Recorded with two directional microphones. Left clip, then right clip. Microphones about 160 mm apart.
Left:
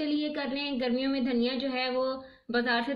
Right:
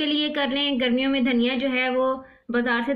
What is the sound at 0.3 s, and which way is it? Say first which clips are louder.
Speech: right 9 dB; 30° left (ahead or behind).